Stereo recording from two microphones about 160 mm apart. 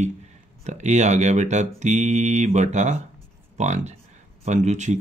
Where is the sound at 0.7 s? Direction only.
45° right (ahead or behind).